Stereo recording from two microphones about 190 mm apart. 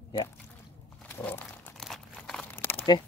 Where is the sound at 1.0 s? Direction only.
10° left (ahead or behind).